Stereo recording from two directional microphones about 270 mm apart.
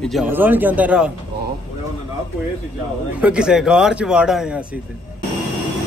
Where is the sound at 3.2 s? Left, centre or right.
Centre.